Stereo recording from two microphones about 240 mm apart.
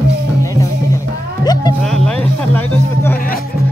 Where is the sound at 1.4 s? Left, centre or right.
Centre.